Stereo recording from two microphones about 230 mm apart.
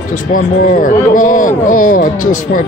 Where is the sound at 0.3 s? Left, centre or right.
Left.